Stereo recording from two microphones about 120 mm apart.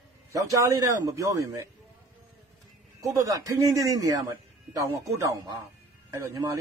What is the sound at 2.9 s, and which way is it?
A man's voice, 30° right (ahead or behind).